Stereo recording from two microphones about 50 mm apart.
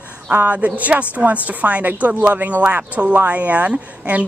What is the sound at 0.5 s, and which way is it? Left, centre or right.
A woman's voice, right.